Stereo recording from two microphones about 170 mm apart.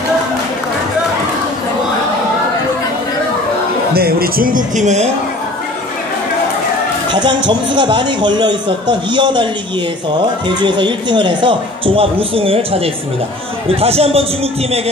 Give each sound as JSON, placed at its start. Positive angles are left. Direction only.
{"t": 3.9, "sound": "a man's voice", "side_deg": -65}
{"t": 7.1, "sound": "a man's voice", "side_deg": -25}